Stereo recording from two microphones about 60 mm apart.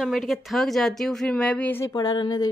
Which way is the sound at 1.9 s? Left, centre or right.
Left.